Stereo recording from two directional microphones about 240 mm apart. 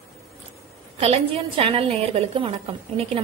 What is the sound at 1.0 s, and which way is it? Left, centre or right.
A woman's voice, right.